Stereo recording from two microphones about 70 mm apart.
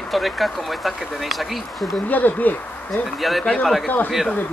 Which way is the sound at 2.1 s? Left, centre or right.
Left.